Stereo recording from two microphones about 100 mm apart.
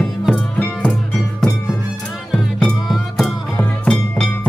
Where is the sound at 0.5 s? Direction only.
15° left (ahead or behind).